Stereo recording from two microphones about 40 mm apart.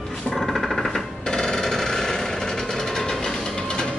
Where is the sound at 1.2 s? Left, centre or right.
Centre.